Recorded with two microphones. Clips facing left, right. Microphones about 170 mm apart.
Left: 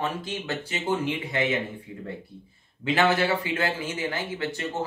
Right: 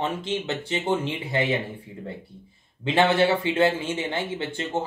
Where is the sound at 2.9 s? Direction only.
25° right (ahead or behind).